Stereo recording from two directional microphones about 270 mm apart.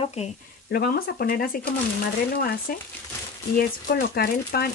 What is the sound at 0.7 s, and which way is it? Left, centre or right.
Speech, left.